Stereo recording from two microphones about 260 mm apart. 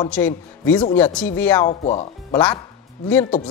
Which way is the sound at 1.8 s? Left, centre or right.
Left.